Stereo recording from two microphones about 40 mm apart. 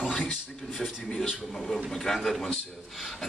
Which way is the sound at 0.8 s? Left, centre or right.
Centre.